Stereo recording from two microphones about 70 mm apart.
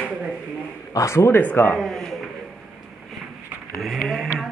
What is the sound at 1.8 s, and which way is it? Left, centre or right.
Speech, centre.